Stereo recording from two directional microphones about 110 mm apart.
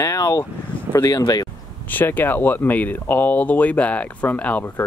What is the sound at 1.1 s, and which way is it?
Speech, 40° left (ahead or behind).